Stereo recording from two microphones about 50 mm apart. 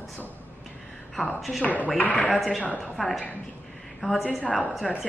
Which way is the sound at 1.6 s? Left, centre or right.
Left.